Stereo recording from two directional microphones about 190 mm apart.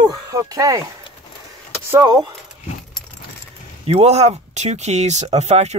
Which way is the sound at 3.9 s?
35° right (ahead or behind).